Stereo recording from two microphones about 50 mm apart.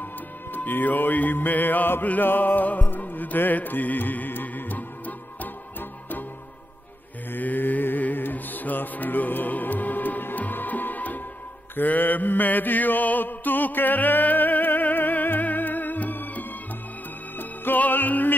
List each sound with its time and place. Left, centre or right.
0.5 s music: left
7.3 s music: left
11.7 s mantra: left
17.4 s music: left